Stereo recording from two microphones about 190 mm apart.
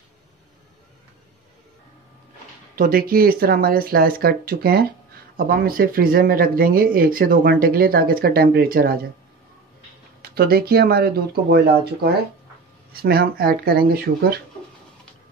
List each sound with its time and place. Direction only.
2.7 s speech: 50° right (ahead or behind)
10.2 s speech: 55° right (ahead or behind)